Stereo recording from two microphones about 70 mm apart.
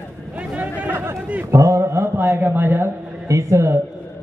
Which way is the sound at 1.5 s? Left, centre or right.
Right.